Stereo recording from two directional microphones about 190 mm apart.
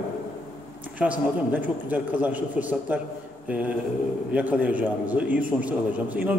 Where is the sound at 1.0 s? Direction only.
10° right (ahead or behind).